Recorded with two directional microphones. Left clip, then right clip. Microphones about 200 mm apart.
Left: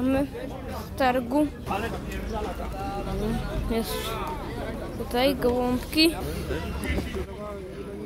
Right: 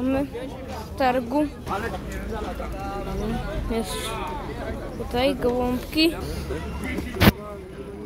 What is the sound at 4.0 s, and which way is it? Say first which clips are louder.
Speech: right 1 dB; 40° right (ahead or behind).